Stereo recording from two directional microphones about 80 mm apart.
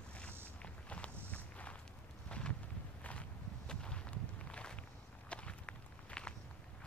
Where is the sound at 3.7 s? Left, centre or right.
Centre.